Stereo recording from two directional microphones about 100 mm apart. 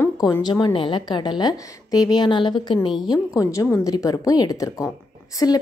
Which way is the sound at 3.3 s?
30° left (ahead or behind).